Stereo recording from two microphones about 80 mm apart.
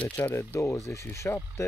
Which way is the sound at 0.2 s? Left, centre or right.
Left.